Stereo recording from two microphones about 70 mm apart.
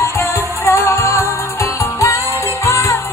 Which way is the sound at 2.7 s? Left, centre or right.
Left.